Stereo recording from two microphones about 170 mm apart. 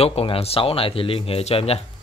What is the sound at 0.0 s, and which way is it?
Speech, 35° left (ahead or behind).